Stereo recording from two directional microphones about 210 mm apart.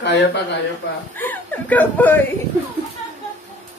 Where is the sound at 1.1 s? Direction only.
10° left (ahead or behind).